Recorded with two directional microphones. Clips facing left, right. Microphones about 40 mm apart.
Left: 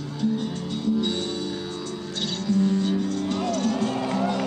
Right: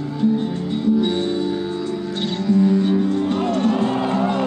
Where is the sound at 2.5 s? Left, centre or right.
Right.